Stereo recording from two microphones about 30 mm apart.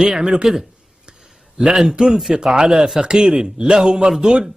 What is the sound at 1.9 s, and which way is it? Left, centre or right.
Speech, right.